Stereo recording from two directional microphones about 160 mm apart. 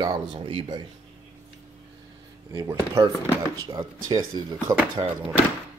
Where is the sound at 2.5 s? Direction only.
20° right (ahead or behind).